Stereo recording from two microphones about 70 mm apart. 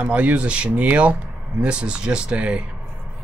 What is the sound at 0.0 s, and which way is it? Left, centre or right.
Speech, right.